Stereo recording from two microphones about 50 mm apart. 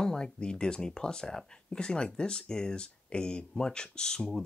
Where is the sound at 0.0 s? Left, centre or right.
Centre.